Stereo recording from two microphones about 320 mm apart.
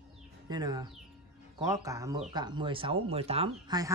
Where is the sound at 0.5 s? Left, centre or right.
Centre.